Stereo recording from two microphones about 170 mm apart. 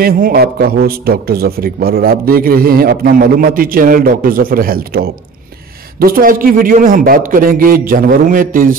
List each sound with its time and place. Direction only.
0.0 s a man's voice: 60° right (ahead or behind)